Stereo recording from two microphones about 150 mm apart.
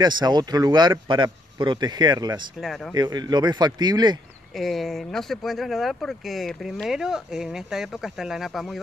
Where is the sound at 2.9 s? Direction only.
25° right (ahead or behind).